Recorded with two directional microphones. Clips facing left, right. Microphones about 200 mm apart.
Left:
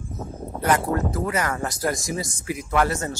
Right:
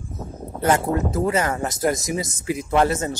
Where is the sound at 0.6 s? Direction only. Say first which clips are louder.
Right 2 dB; 25° right (ahead or behind).